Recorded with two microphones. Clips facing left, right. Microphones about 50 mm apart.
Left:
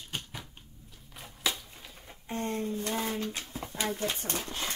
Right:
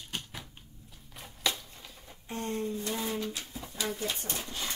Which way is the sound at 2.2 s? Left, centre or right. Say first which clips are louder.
Left 2 dB; left.